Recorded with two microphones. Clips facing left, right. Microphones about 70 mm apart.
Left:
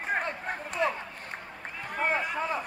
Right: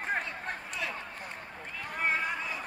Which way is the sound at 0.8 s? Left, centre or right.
Left.